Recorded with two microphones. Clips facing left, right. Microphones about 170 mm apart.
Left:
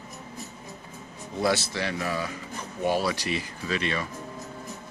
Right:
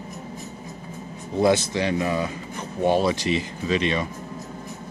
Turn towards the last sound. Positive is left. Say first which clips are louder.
# right 6 dB
turn(degrees=-20)  # may be behind; listen again after turning